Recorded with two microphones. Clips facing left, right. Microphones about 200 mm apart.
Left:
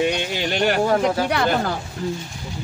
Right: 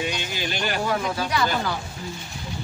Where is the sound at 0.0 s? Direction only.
65° left (ahead or behind).